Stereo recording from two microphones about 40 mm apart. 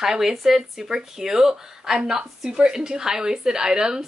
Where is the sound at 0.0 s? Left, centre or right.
Centre.